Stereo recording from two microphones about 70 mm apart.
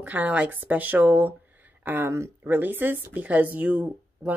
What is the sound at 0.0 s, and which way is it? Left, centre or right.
Speech, right.